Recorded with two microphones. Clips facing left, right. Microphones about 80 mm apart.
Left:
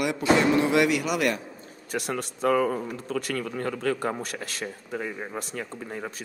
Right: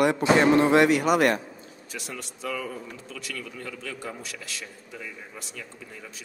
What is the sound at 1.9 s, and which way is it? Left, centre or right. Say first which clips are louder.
Speech: left 9 dB; left.